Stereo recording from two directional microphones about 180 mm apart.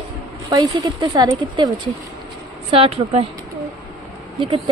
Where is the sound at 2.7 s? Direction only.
30° right (ahead or behind).